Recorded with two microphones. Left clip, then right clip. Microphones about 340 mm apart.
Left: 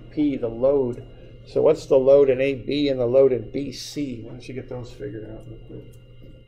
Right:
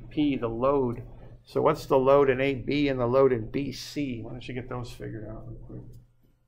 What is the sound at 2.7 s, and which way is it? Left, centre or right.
Speech, right.